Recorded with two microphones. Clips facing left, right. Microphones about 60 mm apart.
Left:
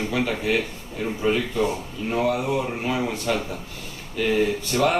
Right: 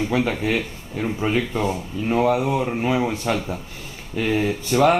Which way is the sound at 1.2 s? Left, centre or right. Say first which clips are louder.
Even; right.